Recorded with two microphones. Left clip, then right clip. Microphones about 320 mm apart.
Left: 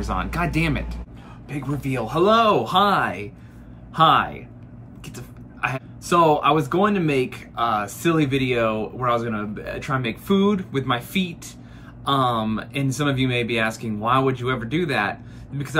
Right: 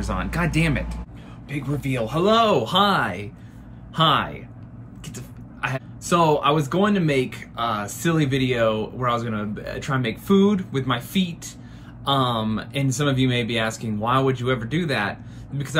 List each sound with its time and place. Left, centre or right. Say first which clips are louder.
0.1 s speech: left 1 dB; centre